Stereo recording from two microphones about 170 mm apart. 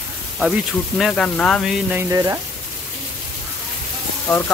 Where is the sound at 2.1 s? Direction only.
15° right (ahead or behind).